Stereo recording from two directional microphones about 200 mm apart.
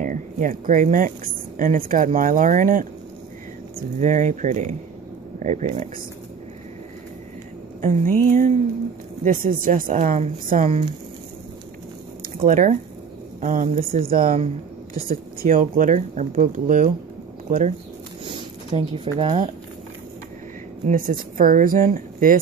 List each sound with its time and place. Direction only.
0.0 s speech: 40° right (ahead or behind)
7.8 s speech: 40° right (ahead or behind)
12.4 s a woman's voice: 40° right (ahead or behind)
18.2 s a sound: 25° right (ahead or behind)
20.8 s a woman's voice: 45° right (ahead or behind)